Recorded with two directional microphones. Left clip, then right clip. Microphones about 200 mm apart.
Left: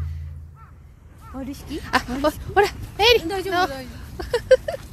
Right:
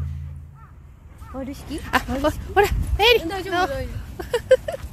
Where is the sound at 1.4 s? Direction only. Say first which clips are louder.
Right 1 dB; 40° right (ahead or behind).